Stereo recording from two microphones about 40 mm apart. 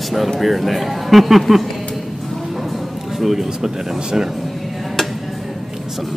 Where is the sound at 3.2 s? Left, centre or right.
Centre.